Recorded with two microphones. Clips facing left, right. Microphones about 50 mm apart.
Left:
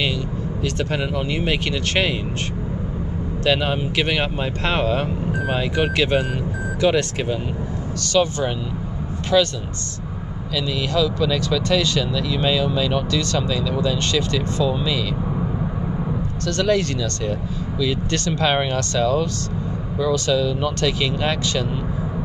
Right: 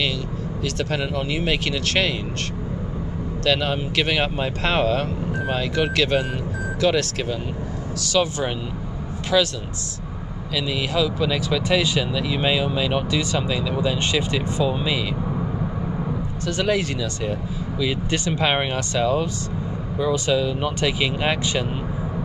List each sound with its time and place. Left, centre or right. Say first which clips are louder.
0.7 s speech: left 1 dB; centre
3.4 s speech: left 2 dB; centre
8.0 s speech: left 2 dB; centre
10.5 s speech: left 1 dB; centre
16.4 s speech: left 2 dB; centre